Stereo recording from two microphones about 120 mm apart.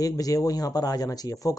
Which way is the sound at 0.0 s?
30° left (ahead or behind).